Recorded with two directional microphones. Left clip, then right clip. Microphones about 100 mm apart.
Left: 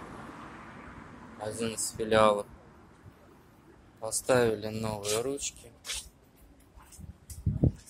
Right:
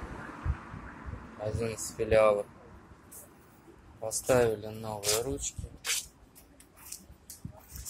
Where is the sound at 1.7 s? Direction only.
5° left (ahead or behind).